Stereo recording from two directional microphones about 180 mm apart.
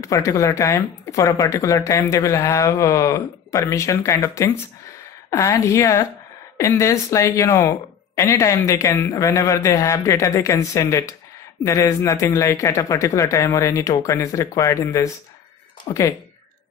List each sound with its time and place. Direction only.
0.0 s speech: 15° left (ahead or behind)